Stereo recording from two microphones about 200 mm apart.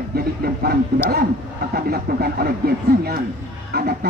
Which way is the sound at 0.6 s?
50° right (ahead or behind).